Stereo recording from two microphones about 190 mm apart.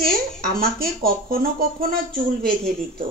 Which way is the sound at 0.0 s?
50° right (ahead or behind).